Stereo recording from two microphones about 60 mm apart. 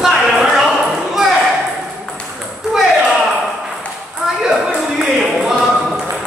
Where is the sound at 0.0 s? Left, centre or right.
Centre.